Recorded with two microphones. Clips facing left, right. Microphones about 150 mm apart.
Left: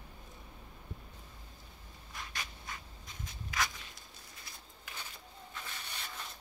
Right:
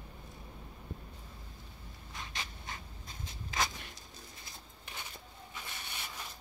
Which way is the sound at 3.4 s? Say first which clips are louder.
Right 1 dB; 25° right (ahead or behind).